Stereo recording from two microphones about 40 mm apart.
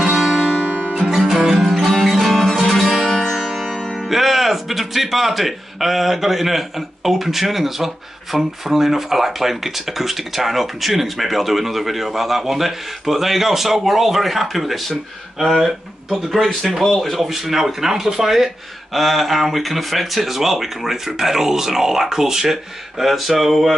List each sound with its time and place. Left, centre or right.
0.0 s music: centre
1.9 s music: centre
3.3 s music: centre
7.1 s speech: centre
16.8 s speech: centre
18.9 s speech: centre